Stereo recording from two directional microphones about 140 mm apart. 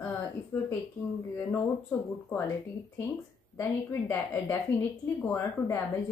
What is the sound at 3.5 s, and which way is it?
Speech, 15° left (ahead or behind).